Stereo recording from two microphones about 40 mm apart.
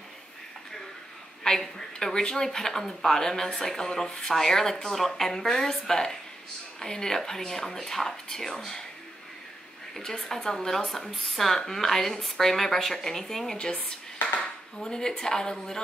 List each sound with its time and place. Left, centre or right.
1.4 s speech: centre
9.9 s speech: centre
14.8 s speech: centre